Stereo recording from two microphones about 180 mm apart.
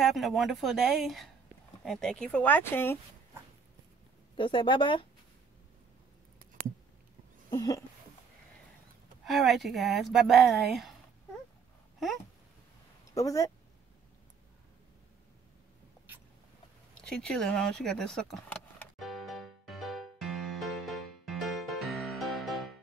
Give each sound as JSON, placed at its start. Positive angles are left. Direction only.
{"t": 0.0, "sound": "speech", "side_deg": 0}
{"t": 4.4, "sound": "speech", "side_deg": 30}
{"t": 6.6, "sound": "a sound", "side_deg": -55}
{"t": 7.5, "sound": "speech", "side_deg": 20}
{"t": 9.2, "sound": "speech", "side_deg": 0}
{"t": 13.1, "sound": "speech", "side_deg": 20}
{"t": 16.9, "sound": "vehicle", "side_deg": 5}